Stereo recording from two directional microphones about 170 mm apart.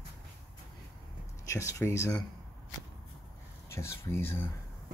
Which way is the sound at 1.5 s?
15° left (ahead or behind).